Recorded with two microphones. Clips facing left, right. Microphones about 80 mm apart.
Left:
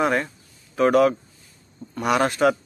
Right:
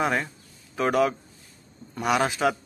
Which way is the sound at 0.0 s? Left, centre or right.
Centre.